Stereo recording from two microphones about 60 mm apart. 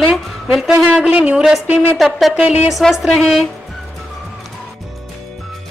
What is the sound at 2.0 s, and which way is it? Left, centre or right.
Speech, centre.